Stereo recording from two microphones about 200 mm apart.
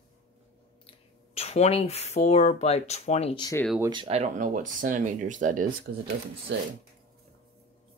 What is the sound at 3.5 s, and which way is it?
Speech, 5° left (ahead or behind).